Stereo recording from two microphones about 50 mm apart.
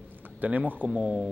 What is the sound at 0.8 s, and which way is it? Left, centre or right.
Speech, right.